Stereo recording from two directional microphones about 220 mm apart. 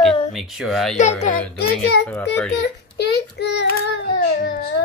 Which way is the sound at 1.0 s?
30° left (ahead or behind).